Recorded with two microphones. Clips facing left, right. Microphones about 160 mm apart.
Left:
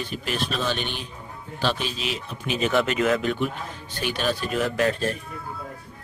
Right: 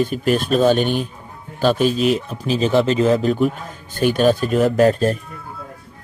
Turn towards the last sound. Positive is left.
turn(degrees=-40)  # may be behind; listen again after turning